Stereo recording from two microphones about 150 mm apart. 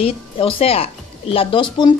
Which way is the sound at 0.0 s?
40° left (ahead or behind).